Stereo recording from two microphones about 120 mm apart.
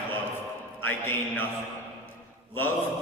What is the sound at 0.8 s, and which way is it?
Speech, 15° left (ahead or behind).